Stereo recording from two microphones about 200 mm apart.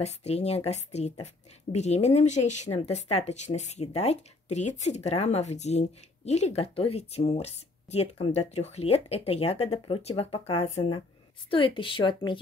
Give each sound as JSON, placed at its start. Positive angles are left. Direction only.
{"t": 0.0, "sound": "speech", "side_deg": 30}